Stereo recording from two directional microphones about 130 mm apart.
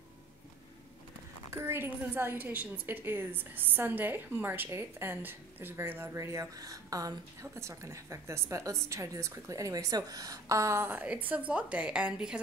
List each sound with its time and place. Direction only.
1.5 s a woman's voice: 20° right (ahead or behind)